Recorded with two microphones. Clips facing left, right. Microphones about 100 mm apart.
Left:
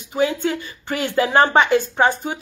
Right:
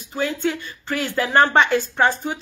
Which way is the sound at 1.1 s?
15° left (ahead or behind).